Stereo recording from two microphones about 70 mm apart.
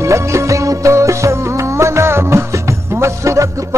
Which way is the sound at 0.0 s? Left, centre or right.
Right.